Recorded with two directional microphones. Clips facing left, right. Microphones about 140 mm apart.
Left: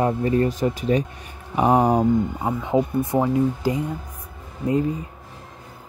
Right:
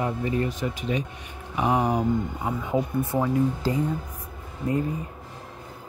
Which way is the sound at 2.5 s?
25° left (ahead or behind).